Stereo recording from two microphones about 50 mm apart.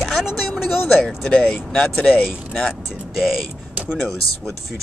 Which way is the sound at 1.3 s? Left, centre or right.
Centre.